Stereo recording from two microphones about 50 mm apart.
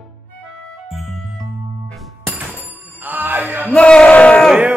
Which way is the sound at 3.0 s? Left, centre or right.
Right.